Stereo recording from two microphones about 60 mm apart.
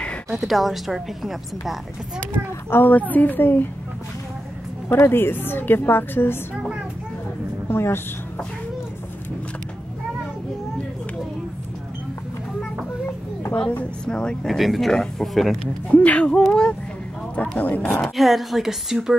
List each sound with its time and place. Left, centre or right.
0.3 s a woman's voice: centre
2.7 s a woman's voice: left
4.8 s a woman's voice: left
7.7 s a woman's voice: left
13.0 s a sound: left
13.6 s a woman's voice: left
14.5 s a woman's voice: centre
15.9 s speech: left
17.4 s speech: left
18.0 s a woman's voice: centre